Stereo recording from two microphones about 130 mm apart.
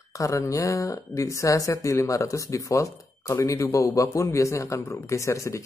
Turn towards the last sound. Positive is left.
turn(degrees=25)  # may be behind; listen again after turning